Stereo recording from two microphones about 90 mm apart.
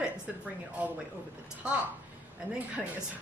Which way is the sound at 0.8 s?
15° right (ahead or behind).